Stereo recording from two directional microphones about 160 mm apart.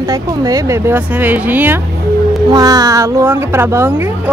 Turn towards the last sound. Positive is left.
turn(degrees=-15)  # may be behind; listen again after turning